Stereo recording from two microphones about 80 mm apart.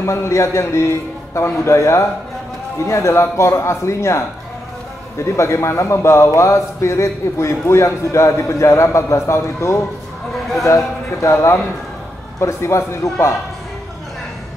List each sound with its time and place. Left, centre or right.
0.0 s a man's voice: left
5.2 s a man's voice: left
11.1 s a man's voice: left